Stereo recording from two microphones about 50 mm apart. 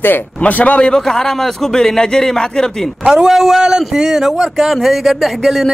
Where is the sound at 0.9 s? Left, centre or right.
Centre.